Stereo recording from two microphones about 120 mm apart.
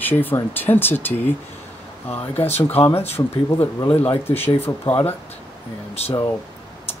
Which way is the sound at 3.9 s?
55° left (ahead or behind).